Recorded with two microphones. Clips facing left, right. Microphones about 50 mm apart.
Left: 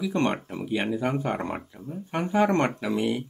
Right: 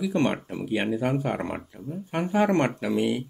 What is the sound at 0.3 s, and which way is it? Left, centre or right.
Speech, centre.